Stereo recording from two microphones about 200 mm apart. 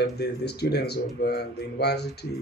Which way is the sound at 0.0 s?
55° left (ahead or behind).